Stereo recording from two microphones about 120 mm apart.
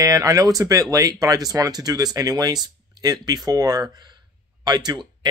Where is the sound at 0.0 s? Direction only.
30° right (ahead or behind).